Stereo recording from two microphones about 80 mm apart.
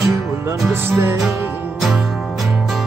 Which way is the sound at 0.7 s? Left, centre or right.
Right.